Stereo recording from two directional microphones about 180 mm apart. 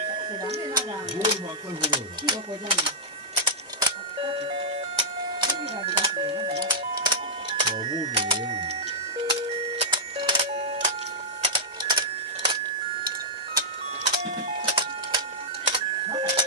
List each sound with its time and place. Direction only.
0.7 s speech: 25° right (ahead or behind)
3.3 s music: 30° right (ahead or behind)
11.4 s a sound: 25° right (ahead or behind)
14.6 s printer: 30° right (ahead or behind)